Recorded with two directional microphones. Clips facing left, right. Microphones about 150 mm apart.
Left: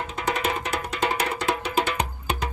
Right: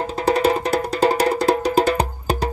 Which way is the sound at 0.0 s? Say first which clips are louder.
Right 9 dB; 35° right (ahead or behind).